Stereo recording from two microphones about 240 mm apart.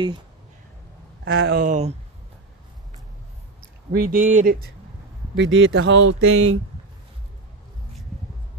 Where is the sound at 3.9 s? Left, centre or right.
Right.